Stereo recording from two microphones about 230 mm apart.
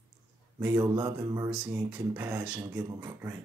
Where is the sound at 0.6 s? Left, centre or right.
Centre.